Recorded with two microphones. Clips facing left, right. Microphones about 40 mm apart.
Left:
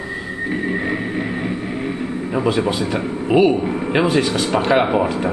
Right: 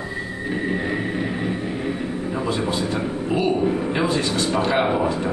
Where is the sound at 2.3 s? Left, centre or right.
Left.